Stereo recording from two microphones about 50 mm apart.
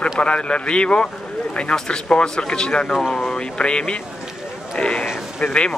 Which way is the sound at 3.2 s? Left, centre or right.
Centre.